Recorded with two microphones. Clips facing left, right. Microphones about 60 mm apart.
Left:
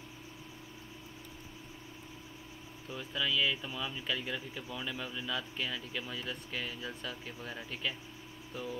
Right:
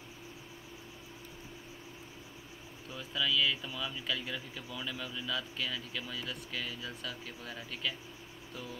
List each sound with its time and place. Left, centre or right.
2.9 s speech: centre